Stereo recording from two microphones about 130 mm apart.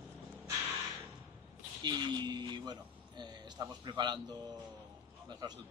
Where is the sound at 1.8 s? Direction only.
35° right (ahead or behind).